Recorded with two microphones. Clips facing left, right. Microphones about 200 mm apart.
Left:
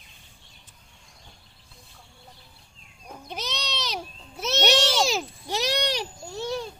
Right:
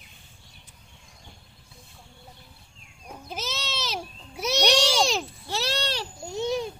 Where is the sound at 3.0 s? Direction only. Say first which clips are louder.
Even; 5° right (ahead or behind).